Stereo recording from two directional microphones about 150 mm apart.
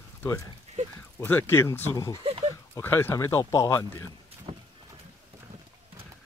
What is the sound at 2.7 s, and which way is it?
Speech, 15° left (ahead or behind).